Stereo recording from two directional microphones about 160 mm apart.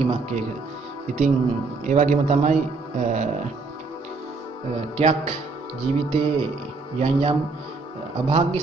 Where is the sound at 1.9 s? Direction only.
50° right (ahead or behind).